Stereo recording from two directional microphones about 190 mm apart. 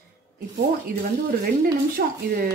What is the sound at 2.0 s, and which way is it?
Speech, 50° right (ahead or behind).